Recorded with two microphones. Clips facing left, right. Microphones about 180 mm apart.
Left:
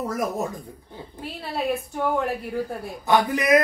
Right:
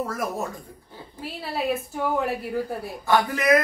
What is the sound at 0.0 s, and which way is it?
Speech, 15° left (ahead or behind).